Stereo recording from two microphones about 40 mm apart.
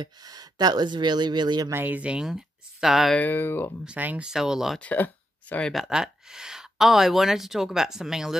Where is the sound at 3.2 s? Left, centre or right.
Left.